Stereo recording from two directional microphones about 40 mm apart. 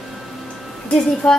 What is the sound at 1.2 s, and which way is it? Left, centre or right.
Speech, left.